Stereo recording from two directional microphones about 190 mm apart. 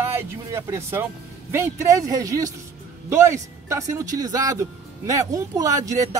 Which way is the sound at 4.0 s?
20° right (ahead or behind).